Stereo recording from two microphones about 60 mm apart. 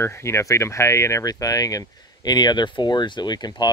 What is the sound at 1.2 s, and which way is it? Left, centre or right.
Speech, left.